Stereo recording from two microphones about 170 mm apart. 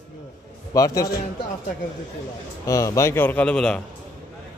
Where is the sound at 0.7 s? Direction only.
20° left (ahead or behind).